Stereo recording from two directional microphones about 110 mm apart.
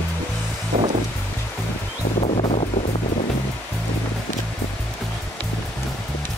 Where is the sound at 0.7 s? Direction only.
70° right (ahead or behind).